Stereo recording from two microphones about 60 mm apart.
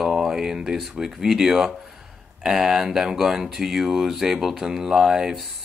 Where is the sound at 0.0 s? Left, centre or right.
Centre.